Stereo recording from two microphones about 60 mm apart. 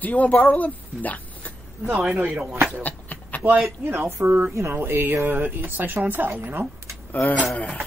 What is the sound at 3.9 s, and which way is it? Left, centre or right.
Speech, right.